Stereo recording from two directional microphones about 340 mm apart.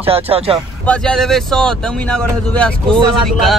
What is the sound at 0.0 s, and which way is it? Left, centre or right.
Speech, centre.